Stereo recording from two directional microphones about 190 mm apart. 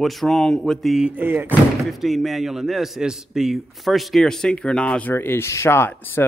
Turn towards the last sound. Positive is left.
turn(degrees=10)  # may be behind; listen again after turning